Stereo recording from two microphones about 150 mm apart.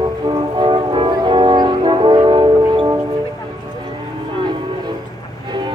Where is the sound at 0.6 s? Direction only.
30° right (ahead or behind).